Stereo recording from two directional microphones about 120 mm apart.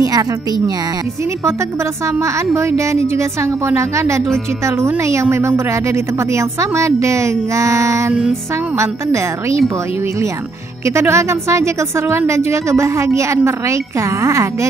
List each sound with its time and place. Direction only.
2.1 s a woman's voice: 25° right (ahead or behind)
8.1 s music: 5° right (ahead or behind)
8.7 s a woman's voice: 25° right (ahead or behind)
10.9 s a woman's voice: 20° right (ahead or behind)